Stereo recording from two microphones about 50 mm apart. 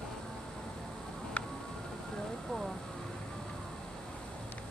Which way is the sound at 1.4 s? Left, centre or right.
Left.